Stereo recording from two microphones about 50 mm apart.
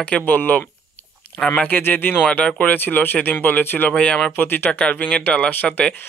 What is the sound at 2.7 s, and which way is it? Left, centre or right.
Speech, left.